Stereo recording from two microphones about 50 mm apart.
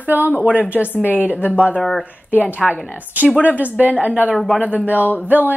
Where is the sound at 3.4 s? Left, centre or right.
Right.